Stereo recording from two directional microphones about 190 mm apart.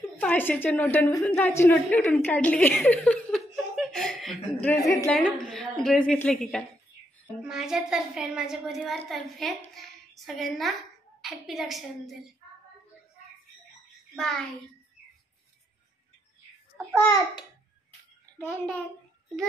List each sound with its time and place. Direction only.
0.0 s a woman's voice: 10° left (ahead or behind)
4.8 s a child's voice: 15° left (ahead or behind)
5.1 s a woman's voice: 5° left (ahead or behind)
14.1 s a woman's voice: centre (ahead or behind)
16.9 s a child's voice: 15° left (ahead or behind)